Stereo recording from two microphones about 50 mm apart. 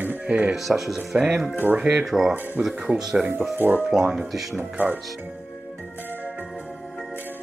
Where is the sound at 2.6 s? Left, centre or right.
Right.